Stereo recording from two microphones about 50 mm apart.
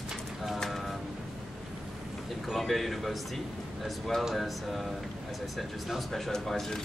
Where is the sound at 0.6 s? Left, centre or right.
Centre.